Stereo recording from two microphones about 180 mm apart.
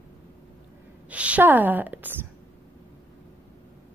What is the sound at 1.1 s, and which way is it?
A woman's voice, 5° right (ahead or behind).